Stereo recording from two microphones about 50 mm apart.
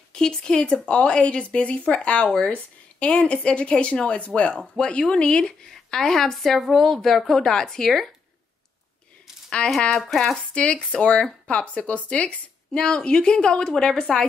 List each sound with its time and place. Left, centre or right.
0.1 s speech: centre
9.7 s speech: centre
10.5 s speech: left